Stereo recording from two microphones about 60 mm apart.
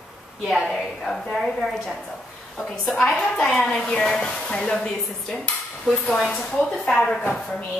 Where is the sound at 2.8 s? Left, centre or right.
Centre.